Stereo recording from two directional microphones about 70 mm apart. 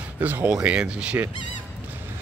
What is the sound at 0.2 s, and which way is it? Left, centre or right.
Speech, right.